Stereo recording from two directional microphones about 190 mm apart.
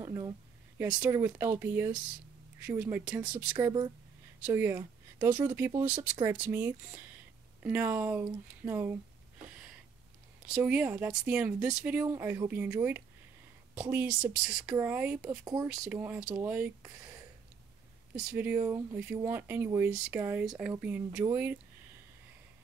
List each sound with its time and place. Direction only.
0.0 s a sound: 15° right (ahead or behind)
0.7 s speech: 5° right (ahead or behind)
10.4 s speech: 5° right (ahead or behind)
15.4 s speech: 20° right (ahead or behind)
15.7 s speech: 5° right (ahead or behind)